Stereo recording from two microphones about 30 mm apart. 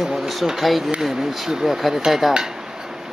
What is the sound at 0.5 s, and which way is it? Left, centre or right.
Speech, centre.